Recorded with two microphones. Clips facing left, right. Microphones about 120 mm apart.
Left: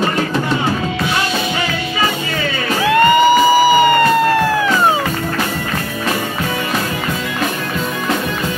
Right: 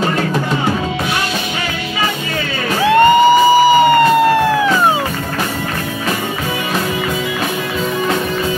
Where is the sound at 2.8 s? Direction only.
25° right (ahead or behind).